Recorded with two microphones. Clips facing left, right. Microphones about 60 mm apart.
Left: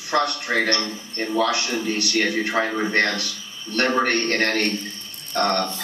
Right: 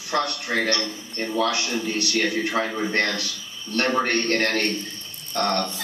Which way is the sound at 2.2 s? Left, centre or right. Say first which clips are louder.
Left 2 dB; left.